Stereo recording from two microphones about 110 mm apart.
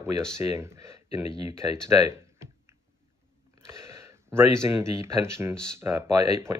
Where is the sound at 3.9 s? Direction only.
25° right (ahead or behind).